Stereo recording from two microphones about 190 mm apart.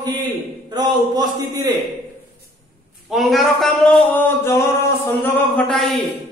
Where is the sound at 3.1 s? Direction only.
Centre (ahead or behind).